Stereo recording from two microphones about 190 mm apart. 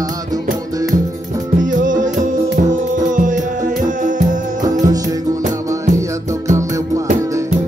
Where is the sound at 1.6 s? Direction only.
45° right (ahead or behind).